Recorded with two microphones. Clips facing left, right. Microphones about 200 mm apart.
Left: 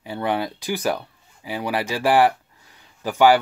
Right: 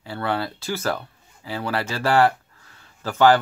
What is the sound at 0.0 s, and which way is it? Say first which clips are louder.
Speech: left 2 dB; 15° left (ahead or behind).